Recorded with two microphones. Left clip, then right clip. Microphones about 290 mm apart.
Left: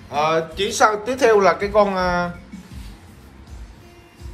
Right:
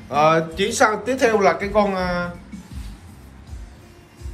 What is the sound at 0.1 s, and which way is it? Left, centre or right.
Speech, centre.